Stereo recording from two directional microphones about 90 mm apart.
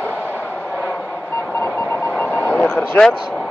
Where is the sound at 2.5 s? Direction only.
15° left (ahead or behind).